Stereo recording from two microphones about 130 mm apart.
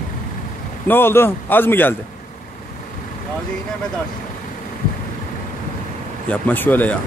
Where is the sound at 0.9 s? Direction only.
15° left (ahead or behind).